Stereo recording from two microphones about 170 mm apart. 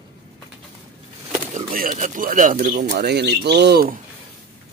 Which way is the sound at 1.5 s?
50° right (ahead or behind).